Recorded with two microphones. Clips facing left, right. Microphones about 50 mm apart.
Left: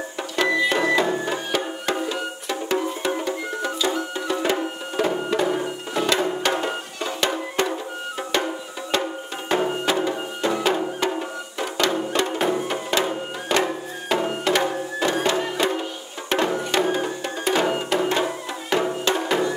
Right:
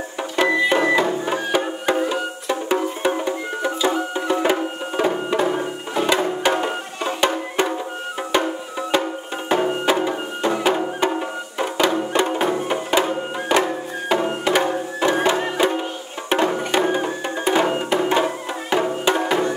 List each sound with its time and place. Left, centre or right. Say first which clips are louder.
0.4 s music: right 3 dB; centre
8.9 s music: right 3 dB; centre